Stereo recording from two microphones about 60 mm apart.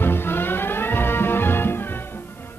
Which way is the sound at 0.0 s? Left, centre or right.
Left.